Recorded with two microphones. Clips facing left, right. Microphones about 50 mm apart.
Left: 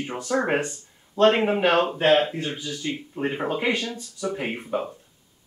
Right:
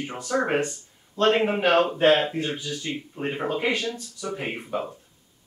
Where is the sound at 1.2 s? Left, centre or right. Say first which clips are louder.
Left 2 dB; centre.